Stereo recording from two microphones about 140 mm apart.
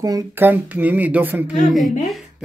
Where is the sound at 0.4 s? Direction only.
15° right (ahead or behind).